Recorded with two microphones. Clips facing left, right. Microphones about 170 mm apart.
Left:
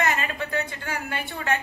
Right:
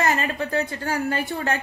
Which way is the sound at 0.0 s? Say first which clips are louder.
Right 3 dB; 35° right (ahead or behind).